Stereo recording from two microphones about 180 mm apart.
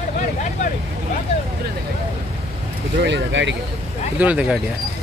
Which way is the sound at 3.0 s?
85° right.